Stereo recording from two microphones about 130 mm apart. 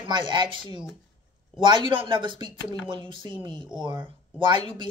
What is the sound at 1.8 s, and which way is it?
Speech, 40° right (ahead or behind).